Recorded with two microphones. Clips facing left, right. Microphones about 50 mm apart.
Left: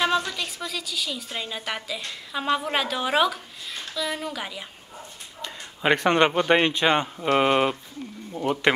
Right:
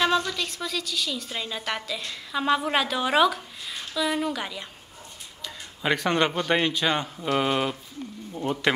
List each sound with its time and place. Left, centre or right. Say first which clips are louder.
0.0 s a woman's voice: even; centre
5.4 s speech: left 4 dB; left